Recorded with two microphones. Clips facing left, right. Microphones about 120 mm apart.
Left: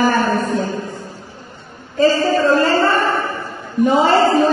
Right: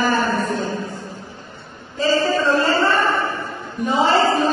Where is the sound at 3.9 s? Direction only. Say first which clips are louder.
Left 3 dB; 50° left (ahead or behind).